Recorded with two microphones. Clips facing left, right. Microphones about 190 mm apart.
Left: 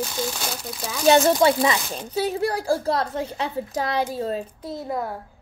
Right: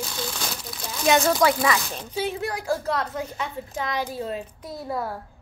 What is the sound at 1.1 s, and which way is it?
Speech, 30° left (ahead or behind).